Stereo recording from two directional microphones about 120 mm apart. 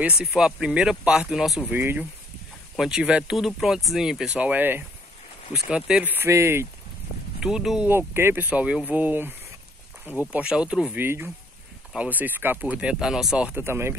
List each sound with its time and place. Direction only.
0.0 s speech: 5° right (ahead or behind)
1.7 s speech: 15° right (ahead or behind)
2.7 s speech: 5° right (ahead or behind); by 6.7 s 25° right (ahead or behind)
7.3 s speech: 5° right (ahead or behind)
7.9 s speech: 20° right (ahead or behind)
10.3 s speech: 10° right (ahead or behind)